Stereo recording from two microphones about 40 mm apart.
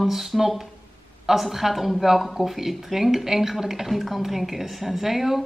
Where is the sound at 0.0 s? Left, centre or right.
Centre.